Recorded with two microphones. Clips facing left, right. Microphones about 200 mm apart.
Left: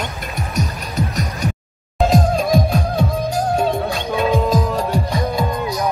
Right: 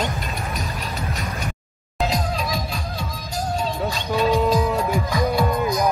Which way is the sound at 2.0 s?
50° left (ahead or behind).